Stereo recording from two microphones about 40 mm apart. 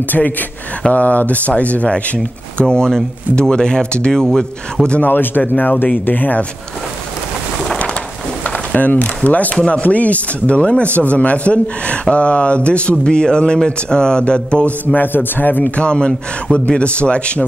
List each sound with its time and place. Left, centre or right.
0.0 s speech: left
2.7 s speech: centre
5.0 s speech: left
8.5 s speech: left
10.6 s speech: left
11.0 s speech: left
15.0 s music: left
15.6 s speech: left